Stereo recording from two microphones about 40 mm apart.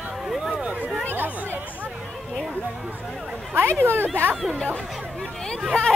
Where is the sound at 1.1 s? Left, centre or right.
Right.